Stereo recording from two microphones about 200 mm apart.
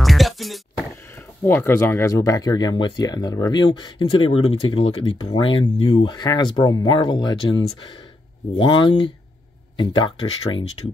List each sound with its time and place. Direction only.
0.0 s music: centre (ahead or behind)
1.1 s speech: 10° left (ahead or behind)